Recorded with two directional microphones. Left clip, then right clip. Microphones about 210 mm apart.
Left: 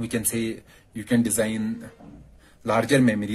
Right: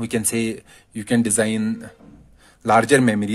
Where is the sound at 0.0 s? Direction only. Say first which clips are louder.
Right 5 dB; 50° right (ahead or behind).